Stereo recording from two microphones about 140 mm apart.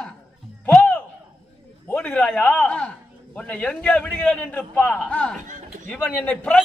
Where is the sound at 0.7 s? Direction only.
10° left (ahead or behind).